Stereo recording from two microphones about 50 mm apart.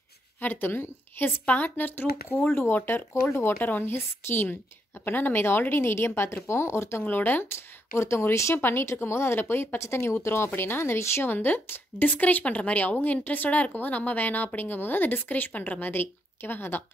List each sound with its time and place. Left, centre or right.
0.4 s speech: left
1.4 s speech: left
3.3 s speech: left
3.6 s speech: left
6.4 s speech: left
7.1 s speech: left
8.5 s speech: left
11.2 s a woman's voice: left